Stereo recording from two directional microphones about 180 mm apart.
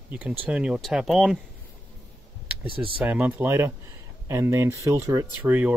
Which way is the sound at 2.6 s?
30° right (ahead or behind).